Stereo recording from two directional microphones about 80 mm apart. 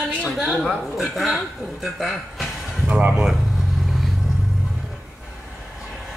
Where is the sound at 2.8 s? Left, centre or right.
Centre.